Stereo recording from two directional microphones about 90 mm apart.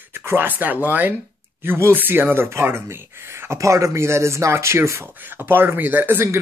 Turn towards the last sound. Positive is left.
turn(degrees=-25)  # may be behind; listen again after turning